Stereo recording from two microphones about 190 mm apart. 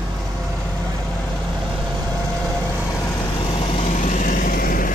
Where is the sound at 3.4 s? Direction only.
30° left (ahead or behind); by 4.9 s 45° left (ahead or behind).